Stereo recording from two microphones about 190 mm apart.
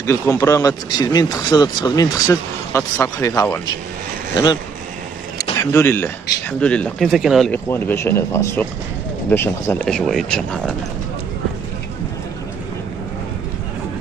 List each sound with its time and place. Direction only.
0.0 s speech: 15° left (ahead or behind)
5.4 s a man's voice: 15° left (ahead or behind)
7.7 s speech: 10° left (ahead or behind)